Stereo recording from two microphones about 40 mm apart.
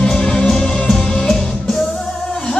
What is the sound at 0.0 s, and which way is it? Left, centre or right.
Music, centre.